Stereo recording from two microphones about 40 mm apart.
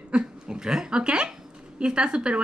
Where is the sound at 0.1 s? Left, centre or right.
Right.